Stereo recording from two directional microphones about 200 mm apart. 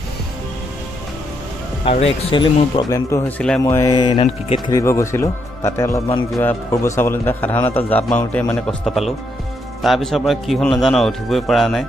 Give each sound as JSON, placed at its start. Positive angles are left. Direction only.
{"t": 1.9, "sound": "speech", "side_deg": 30}
{"t": 2.9, "sound": "a man's voice", "side_deg": 15}
{"t": 3.6, "sound": "a man's voice", "side_deg": 20}